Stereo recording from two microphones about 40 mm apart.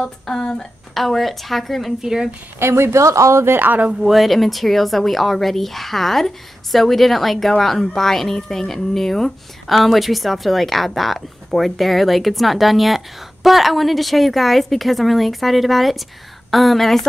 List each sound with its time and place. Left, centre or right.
0.0 s speech: centre
0.9 s speech: centre
2.0 s speech: centre
2.6 s speech: right
3.6 s speech: right
4.0 s speech: centre
9.8 s a woman's voice: centre